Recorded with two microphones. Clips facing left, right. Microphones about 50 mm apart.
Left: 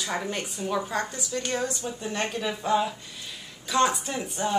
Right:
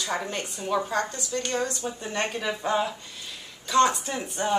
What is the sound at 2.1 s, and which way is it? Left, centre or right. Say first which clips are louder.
Speech: right 1 dB; centre.